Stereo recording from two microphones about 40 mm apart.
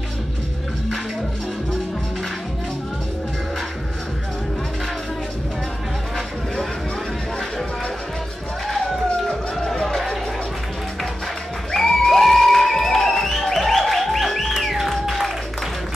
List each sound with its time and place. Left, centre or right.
9.8 s music: centre
11.7 s music: centre